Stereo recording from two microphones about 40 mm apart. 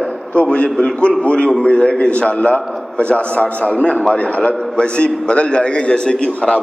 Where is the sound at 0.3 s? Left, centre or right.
Left.